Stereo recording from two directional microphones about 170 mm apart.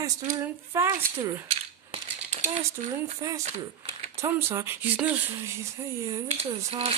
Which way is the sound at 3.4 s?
40° right (ahead or behind).